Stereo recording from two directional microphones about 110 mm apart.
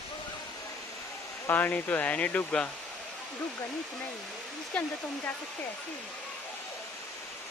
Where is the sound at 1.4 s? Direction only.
15° left (ahead or behind).